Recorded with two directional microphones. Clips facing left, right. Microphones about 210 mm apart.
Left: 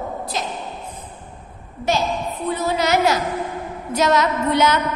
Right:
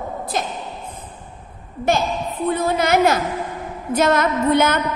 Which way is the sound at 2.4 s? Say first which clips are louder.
Right 2 dB; 55° right (ahead or behind).